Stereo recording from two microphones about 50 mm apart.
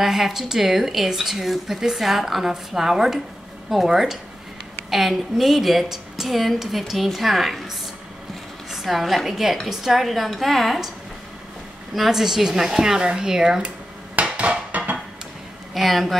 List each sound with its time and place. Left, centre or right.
0.0 s a woman's voice: centre
11.9 s speech: centre
14.1 s music: right
15.7 s speech: centre